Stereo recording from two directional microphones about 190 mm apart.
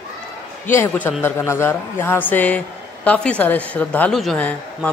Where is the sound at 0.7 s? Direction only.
10° left (ahead or behind).